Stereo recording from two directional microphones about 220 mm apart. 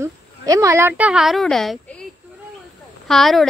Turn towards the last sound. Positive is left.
turn(degrees=0)  # may be behind; listen again after turning